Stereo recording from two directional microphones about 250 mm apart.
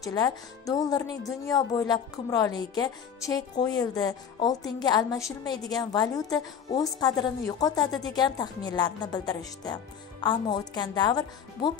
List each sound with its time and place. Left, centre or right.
0.0 s a woman's voice: centre